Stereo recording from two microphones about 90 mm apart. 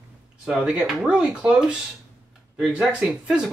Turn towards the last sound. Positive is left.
turn(degrees=-10)  # may be behind; listen again after turning